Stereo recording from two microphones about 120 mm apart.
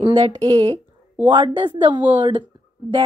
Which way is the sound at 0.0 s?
50° right (ahead or behind).